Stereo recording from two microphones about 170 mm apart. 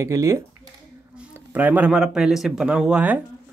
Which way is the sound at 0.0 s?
20° right (ahead or behind).